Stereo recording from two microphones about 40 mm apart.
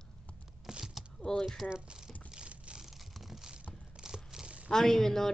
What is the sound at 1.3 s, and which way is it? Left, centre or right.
Speech, centre.